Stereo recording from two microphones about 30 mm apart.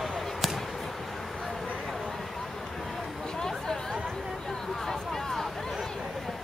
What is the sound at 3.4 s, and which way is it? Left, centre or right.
Chatter, centre.